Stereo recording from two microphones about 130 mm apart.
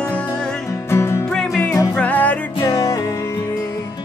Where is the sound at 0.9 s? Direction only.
20° left (ahead or behind).